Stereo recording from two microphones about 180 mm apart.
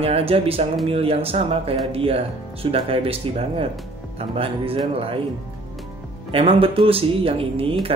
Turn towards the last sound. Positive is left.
turn(degrees=-30)  # may be behind; listen again after turning